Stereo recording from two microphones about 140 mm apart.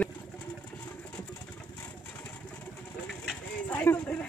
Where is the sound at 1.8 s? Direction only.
15° left (ahead or behind).